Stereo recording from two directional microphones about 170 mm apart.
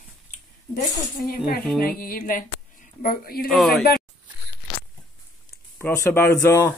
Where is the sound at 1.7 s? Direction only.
55° left (ahead or behind).